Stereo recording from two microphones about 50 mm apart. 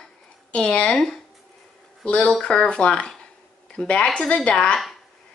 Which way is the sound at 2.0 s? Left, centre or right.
Left.